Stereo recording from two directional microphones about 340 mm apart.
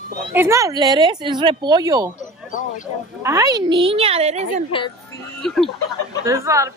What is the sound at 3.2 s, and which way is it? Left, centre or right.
A woman's voice, centre.